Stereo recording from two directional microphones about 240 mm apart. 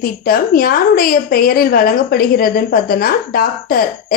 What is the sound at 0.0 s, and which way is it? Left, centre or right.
A woman's voice, left.